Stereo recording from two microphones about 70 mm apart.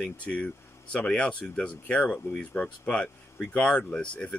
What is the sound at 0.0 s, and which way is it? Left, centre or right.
Speech, centre.